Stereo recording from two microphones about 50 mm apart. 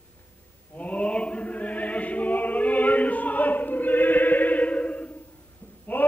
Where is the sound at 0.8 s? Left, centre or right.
Left.